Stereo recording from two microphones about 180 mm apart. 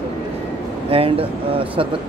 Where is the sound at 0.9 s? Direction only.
30° right (ahead or behind).